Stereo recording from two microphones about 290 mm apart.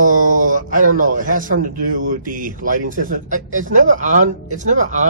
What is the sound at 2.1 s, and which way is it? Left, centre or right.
A man's voice, right.